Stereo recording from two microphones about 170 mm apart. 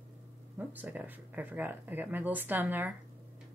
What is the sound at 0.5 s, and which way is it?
Speech, 10° right (ahead or behind).